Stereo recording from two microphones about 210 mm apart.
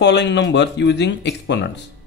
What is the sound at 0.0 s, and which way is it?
Speech, 55° left (ahead or behind).